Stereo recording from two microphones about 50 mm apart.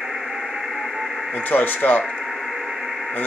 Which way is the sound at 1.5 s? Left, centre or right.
Left.